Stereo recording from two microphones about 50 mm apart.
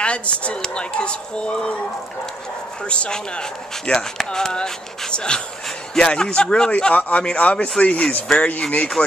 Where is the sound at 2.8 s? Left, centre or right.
Left.